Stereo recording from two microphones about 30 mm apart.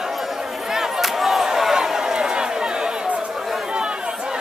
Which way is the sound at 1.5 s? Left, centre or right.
Centre.